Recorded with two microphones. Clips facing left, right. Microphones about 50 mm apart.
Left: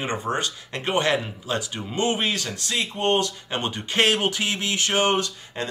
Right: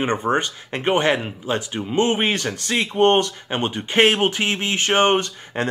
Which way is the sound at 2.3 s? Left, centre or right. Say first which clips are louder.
Right 5 dB; right.